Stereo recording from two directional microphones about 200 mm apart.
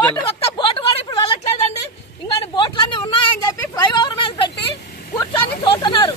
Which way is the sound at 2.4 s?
25° left (ahead or behind).